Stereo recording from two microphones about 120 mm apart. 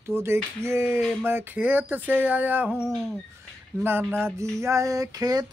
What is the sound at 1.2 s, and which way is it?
Speech, 15° right (ahead or behind).